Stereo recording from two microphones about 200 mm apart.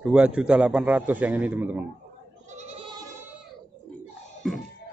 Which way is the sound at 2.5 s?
35° right (ahead or behind).